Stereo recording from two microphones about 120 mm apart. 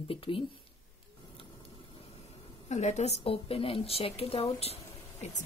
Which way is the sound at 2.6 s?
70° left (ahead or behind).